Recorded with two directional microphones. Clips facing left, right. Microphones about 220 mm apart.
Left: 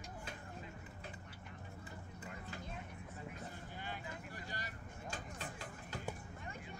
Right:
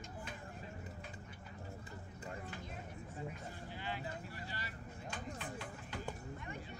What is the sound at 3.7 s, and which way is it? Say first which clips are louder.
Vehicle: right 6 dB; 50° left (ahead or behind).